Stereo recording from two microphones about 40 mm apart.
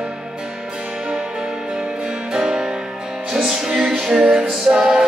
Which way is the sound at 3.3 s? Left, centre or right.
Centre.